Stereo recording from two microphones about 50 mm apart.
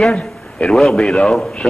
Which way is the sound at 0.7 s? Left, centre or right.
Centre.